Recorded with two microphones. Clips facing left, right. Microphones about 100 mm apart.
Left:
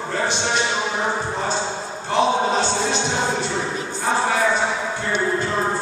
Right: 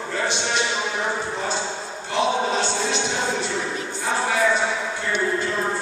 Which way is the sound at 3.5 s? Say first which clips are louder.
Left 2 dB; 25° left (ahead or behind).